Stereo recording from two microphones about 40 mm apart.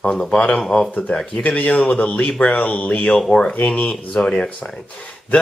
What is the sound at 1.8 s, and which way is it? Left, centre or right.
Speech, left.